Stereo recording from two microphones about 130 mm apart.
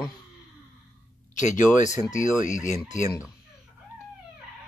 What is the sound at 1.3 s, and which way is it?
Speech, 75° left (ahead or behind).